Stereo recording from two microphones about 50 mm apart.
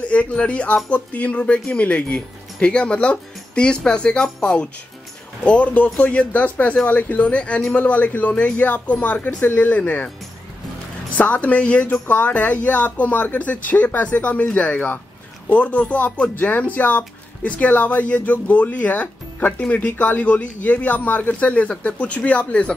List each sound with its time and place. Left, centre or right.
0.1 s a man's voice: left
5.4 s a man's voice: left
11.1 s a man's voice: left
11.9 s a man's voice: left